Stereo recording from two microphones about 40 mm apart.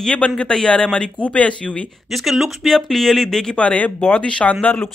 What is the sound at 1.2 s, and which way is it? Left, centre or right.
Speech, left.